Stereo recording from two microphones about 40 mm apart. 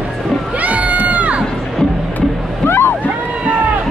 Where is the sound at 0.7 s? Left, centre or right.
Right.